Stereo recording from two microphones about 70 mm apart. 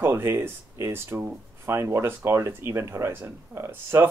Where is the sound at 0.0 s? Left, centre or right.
Right.